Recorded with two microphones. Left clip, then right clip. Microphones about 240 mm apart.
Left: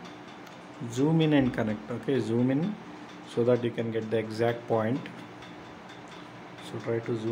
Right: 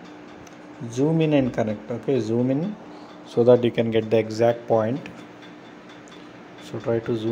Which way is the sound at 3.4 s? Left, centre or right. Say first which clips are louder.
Right 10 dB; right.